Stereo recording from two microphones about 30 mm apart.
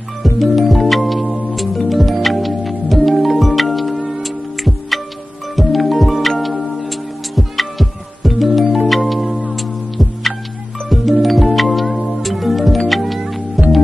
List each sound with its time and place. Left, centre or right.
0.2 s music: centre
7.3 s music: centre